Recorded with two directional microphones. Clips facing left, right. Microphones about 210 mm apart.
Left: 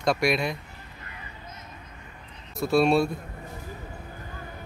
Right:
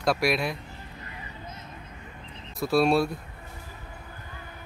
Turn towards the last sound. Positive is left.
turn(degrees=0)  # may be behind; listen again after turning